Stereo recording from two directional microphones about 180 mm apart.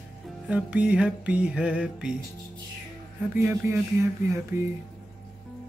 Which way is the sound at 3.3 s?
15° right (ahead or behind).